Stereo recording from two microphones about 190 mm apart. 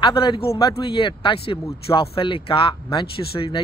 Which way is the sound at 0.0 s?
25° left (ahead or behind).